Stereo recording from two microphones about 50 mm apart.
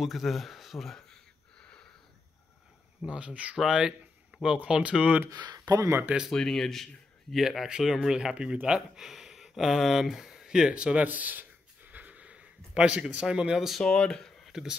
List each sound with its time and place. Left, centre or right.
0.0 s a sound: centre
3.0 s speech: right
3.6 s speech: centre
5.8 s speech: right
6.3 s speech: centre
7.4 s speech: centre
9.0 s speech: centre
11.1 s a sound: right
13.1 s speech: centre
13.8 s speech: centre
14.4 s a sound: centre